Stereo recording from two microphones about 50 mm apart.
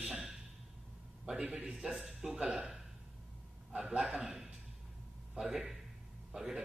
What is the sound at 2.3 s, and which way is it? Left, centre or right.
Speech, centre.